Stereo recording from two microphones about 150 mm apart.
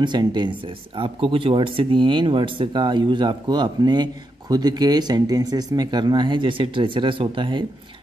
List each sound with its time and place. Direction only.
0.0 s speech: 30° right (ahead or behind)